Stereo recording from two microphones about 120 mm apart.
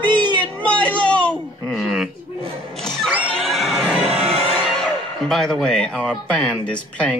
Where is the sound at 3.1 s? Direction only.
10° left (ahead or behind).